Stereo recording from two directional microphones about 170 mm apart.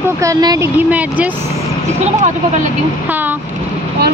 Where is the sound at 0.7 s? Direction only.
10° right (ahead or behind).